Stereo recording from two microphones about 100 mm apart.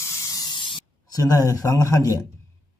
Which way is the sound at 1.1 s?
35° left (ahead or behind).